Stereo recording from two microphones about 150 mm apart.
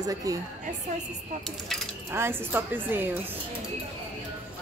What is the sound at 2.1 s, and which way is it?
Speech, 15° right (ahead or behind).